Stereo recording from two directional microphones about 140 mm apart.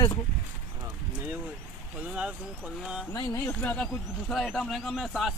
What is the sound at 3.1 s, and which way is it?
Speech, 25° left (ahead or behind).